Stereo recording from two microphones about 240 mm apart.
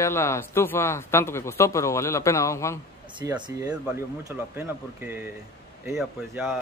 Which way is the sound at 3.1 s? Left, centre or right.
Centre.